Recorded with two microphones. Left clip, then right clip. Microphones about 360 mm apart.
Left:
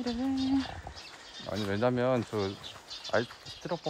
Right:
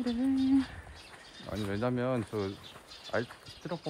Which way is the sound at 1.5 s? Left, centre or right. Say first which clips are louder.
Left 4 dB; left.